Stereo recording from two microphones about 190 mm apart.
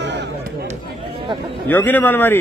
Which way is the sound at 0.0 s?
65° right (ahead or behind).